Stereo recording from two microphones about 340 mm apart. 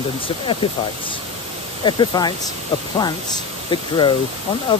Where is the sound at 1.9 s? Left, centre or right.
Centre.